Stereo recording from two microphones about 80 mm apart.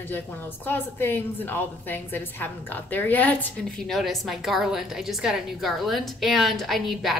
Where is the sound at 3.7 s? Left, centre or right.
Centre.